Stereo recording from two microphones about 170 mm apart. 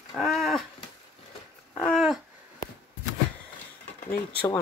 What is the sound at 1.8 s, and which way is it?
Dog, centre (ahead or behind).